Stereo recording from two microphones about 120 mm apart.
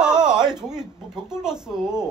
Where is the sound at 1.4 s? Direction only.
5° right (ahead or behind).